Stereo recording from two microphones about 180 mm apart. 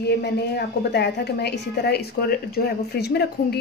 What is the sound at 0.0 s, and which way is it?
A woman's voice, 65° left (ahead or behind).